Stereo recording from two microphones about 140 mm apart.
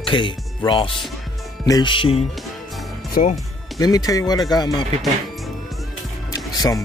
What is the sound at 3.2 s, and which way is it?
Speech, 50° left (ahead or behind).